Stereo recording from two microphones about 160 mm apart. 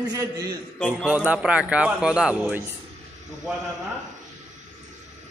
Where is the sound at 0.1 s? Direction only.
20° right (ahead or behind).